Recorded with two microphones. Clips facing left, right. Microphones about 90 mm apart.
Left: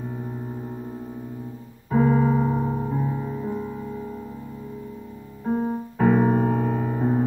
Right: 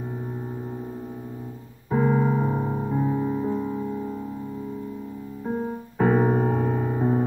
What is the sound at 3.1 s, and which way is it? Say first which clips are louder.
Music: right 4 dB; 20° right (ahead or behind).